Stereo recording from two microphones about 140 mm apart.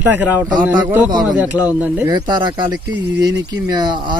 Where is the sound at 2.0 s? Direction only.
30° right (ahead or behind).